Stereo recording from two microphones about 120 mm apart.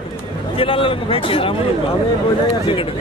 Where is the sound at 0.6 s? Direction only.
50° left (ahead or behind).